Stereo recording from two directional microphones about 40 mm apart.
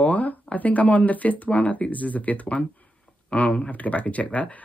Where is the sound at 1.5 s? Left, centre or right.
Left.